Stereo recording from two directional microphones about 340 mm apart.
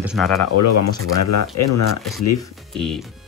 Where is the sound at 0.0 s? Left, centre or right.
Centre.